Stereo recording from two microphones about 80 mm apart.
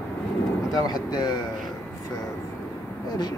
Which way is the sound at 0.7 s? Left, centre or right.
Left.